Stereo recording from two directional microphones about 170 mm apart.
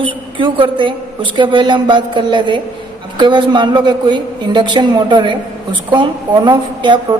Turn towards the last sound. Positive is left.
turn(degrees=-25)  # may be behind; listen again after turning